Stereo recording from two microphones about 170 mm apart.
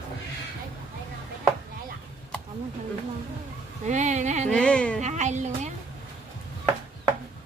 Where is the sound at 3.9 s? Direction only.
45° right (ahead or behind).